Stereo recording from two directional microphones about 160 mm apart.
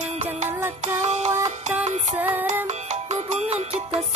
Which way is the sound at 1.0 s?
45° right (ahead or behind).